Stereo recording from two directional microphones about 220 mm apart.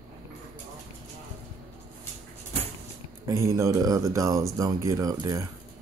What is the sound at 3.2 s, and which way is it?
Speech, 15° right (ahead or behind).